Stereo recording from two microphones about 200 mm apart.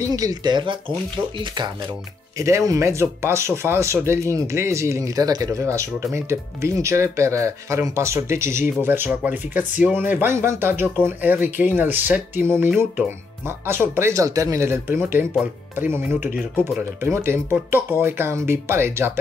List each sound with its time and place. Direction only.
0.0 s speech: 15° right (ahead or behind)
2.3 s speech: 15° right (ahead or behind)